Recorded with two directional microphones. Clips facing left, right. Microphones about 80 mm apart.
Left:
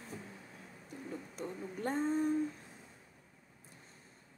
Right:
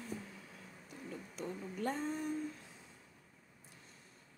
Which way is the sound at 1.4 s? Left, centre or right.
Left.